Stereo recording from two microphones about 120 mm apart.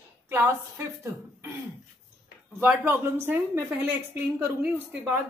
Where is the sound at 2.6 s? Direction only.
15° right (ahead or behind).